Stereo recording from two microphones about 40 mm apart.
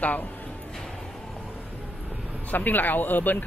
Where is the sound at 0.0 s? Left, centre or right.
Left.